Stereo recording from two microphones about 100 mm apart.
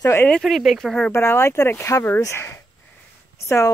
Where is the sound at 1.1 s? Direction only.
25° left (ahead or behind).